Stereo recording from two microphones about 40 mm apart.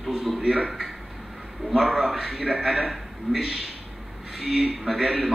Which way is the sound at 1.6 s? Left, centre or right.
Centre.